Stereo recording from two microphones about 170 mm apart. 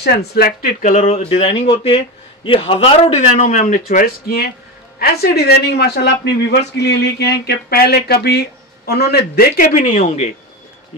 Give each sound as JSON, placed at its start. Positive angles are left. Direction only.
{"t": 0.3, "sound": "speech", "side_deg": 60}
{"t": 0.9, "sound": "a man's voice", "side_deg": 35}